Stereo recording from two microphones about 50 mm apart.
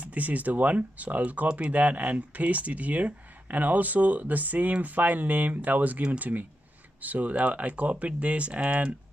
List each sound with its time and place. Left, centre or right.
0.0 s speech: right